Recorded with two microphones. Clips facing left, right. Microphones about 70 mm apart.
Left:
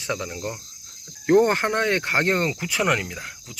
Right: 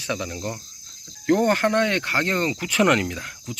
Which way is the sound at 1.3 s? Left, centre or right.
Left.